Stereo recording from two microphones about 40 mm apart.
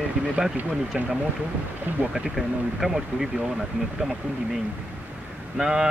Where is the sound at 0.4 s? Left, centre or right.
Right.